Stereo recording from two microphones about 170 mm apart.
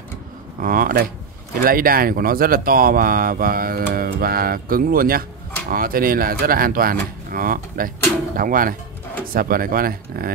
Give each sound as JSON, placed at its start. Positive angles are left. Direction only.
{"t": 0.6, "sound": "speech", "side_deg": -55}